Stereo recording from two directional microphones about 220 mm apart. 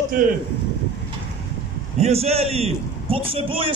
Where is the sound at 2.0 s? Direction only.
30° right (ahead or behind).